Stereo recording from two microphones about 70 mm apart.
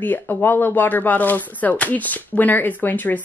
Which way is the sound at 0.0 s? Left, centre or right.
Left.